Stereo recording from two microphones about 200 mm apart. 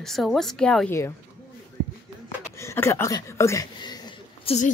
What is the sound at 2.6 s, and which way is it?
Speech, 15° left (ahead or behind).